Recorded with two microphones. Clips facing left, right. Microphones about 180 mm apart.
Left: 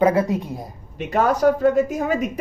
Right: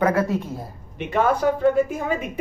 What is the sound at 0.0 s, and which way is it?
Speech, 15° left (ahead or behind).